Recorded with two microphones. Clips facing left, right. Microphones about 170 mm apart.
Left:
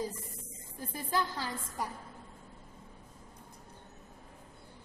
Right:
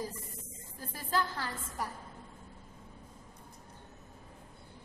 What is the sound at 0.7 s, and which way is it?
A woman's voice, 15° left (ahead or behind).